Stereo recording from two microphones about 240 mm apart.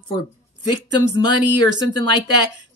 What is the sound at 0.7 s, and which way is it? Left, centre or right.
Speech, centre.